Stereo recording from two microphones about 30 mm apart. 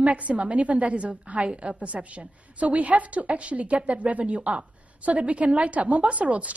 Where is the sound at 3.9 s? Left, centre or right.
Right.